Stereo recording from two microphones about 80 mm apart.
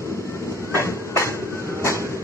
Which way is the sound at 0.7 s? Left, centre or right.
Left.